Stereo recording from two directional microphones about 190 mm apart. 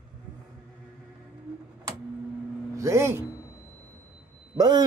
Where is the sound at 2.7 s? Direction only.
15° right (ahead or behind).